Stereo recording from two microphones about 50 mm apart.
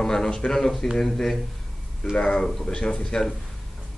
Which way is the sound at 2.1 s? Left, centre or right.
Centre.